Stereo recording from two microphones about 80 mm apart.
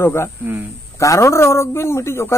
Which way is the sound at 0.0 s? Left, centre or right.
Left.